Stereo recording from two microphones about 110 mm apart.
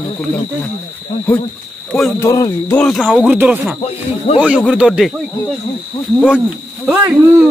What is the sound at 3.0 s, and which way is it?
Speech, 10° right (ahead or behind).